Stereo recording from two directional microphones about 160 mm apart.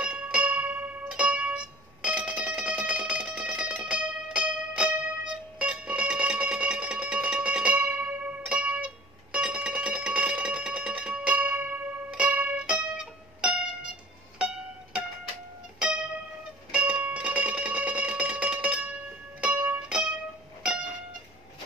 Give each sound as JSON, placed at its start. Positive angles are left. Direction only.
{"t": 0.0, "sound": "music", "side_deg": -5}
{"t": 15.8, "sound": "music", "side_deg": -5}